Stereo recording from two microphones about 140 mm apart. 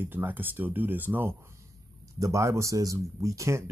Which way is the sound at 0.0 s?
15° right (ahead or behind).